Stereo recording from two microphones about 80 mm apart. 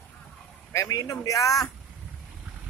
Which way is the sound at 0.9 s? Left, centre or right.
Left.